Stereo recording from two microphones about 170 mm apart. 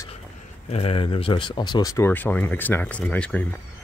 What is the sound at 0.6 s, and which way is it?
Speech, 35° left (ahead or behind).